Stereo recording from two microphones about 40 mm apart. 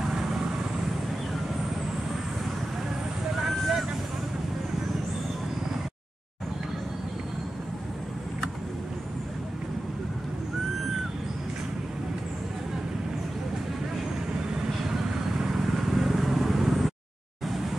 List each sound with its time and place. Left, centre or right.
0.0 s vehicle: centre
3.3 s vehicle: centre
14.8 s vehicle: centre